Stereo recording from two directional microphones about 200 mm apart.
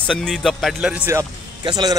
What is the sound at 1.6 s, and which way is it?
Speech, 20° right (ahead or behind).